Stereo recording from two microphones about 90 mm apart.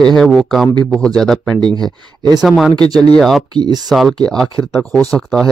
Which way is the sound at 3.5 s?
50° right (ahead or behind).